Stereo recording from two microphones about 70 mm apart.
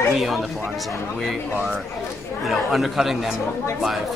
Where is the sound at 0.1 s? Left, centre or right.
Centre.